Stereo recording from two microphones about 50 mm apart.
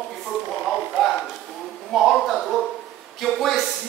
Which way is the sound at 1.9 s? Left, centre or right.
Centre.